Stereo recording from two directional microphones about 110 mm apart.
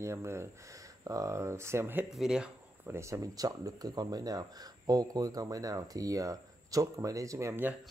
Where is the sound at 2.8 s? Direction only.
25° right (ahead or behind).